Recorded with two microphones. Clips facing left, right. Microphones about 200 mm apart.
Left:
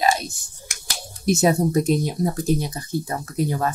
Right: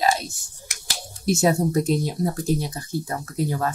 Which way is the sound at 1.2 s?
20° left (ahead or behind).